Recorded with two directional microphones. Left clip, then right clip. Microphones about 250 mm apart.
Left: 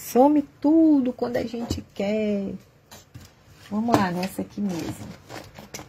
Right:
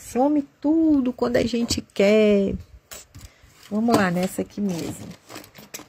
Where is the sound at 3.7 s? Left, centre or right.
Right.